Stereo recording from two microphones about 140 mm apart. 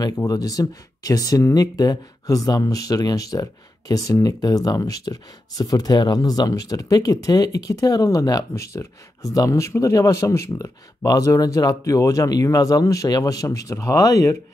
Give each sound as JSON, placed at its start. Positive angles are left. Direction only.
{"t": 0.0, "sound": "speech", "side_deg": 25}